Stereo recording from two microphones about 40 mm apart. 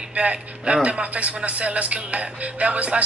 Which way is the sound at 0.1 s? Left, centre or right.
Right.